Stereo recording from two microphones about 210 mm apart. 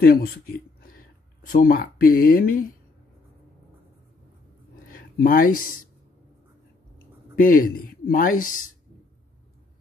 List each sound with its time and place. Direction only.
0.0 s speech: 45° left (ahead or behind)
4.9 s speech: 45° left (ahead or behind)
7.3 s a man's voice: 40° left (ahead or behind)